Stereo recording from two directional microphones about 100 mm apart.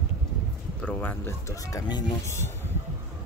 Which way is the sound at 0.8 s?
15° left (ahead or behind).